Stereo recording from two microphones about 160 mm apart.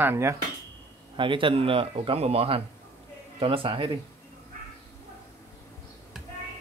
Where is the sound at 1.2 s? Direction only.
30° right (ahead or behind).